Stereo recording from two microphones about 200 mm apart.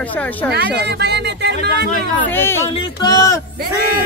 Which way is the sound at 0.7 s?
55° right (ahead or behind).